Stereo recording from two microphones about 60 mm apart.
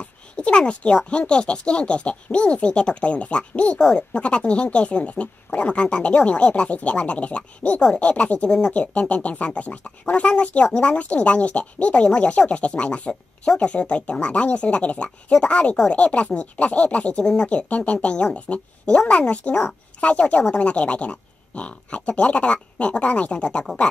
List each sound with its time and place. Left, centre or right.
0.0 s speech: centre